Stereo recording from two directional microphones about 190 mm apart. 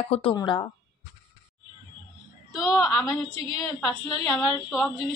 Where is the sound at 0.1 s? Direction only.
30° left (ahead or behind).